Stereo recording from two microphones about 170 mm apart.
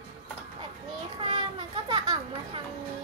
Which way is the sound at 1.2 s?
30° right (ahead or behind).